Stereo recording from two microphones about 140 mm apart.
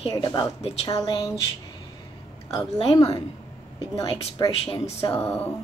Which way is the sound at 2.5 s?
40° left (ahead or behind).